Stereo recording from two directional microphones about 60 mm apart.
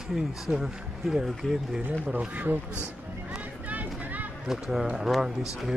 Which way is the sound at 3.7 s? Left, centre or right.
Right.